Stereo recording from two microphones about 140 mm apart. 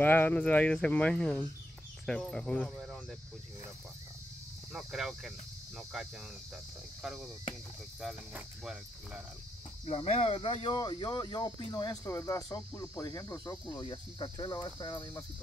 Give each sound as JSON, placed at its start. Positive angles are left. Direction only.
{"t": 0.0, "sound": "speech", "side_deg": 15}
{"t": 4.7, "sound": "speech", "side_deg": -5}
{"t": 9.8, "sound": "speech", "side_deg": 45}